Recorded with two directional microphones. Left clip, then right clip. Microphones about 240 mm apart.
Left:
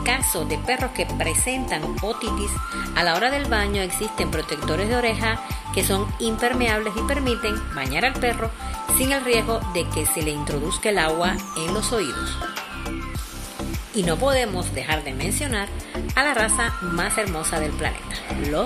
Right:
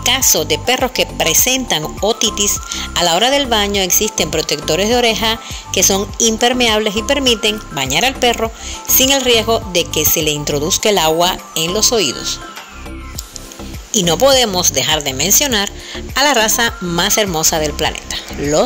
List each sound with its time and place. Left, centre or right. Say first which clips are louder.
0.0 s speech: right 10 dB; right
13.9 s speech: right 10 dB; right